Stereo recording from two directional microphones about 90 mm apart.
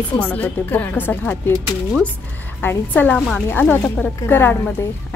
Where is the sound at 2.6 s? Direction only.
20° left (ahead or behind).